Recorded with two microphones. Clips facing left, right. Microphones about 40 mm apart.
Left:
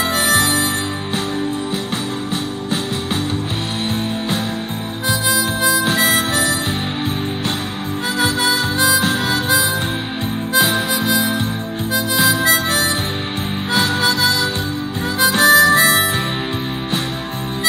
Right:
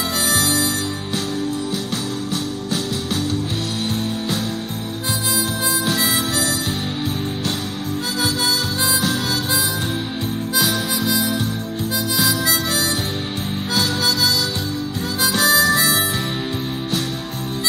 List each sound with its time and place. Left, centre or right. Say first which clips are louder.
0.1 s music: left 3 dB; left
5.3 s harmonica: left 5 dB; centre
5.8 s harmonica: left 4 dB; left
6.0 s harmonica: left 4 dB; left
8.2 s harmonica: left 4 dB; left
10.6 s harmonica: left 4 dB; centre
12.3 s harmonica: left 5 dB; left